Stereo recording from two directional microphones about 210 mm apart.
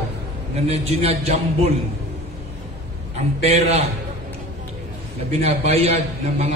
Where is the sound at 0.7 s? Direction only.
30° right (ahead or behind).